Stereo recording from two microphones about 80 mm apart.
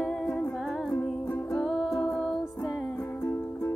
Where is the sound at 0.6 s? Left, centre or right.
Centre.